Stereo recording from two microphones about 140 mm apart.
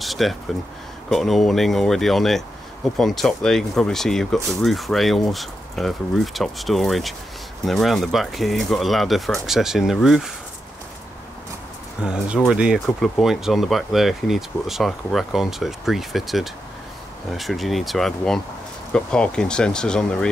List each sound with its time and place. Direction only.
0.0 s a sound: centre (ahead or behind)
1.1 s speech: centre (ahead or behind)
12.0 s speech: 5° right (ahead or behind)